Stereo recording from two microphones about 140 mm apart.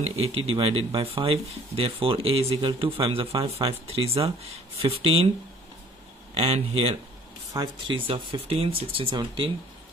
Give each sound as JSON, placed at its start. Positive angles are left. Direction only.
{"t": 0.0, "sound": "speech", "side_deg": -45}
{"t": 6.3, "sound": "speech", "side_deg": -45}
{"t": 7.5, "sound": "speech", "side_deg": -35}